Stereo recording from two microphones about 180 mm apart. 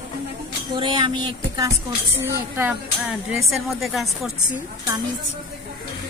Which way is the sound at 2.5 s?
10° right (ahead or behind).